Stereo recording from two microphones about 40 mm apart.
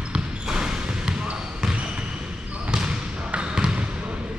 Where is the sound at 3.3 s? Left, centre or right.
Right.